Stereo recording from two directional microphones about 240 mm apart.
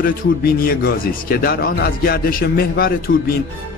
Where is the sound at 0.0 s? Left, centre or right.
Left.